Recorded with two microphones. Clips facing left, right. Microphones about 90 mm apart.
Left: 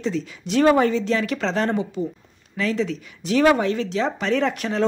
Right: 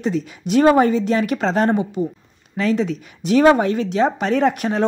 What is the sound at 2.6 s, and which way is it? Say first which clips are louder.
Speech: right 4 dB; 45° right (ahead or behind).